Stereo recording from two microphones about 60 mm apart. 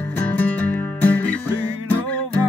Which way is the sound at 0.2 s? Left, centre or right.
Left.